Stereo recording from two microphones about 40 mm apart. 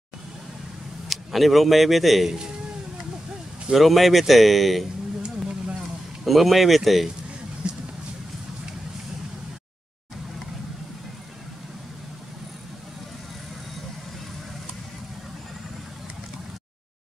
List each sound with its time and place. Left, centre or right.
1.0 s a man's voice: centre
3.7 s speech: centre
6.2 s speech: centre
7.6 s a sound: right